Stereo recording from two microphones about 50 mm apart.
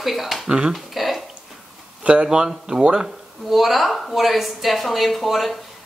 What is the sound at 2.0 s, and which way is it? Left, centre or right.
Speech, right.